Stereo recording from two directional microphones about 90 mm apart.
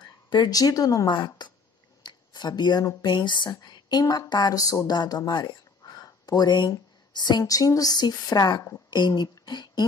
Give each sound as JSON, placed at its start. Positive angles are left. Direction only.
{"t": 0.0, "sound": "speech", "side_deg": 50}
{"t": 4.0, "sound": "speech", "side_deg": 40}